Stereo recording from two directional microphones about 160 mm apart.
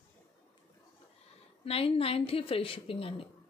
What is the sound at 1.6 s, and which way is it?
A woman's voice, 35° left (ahead or behind).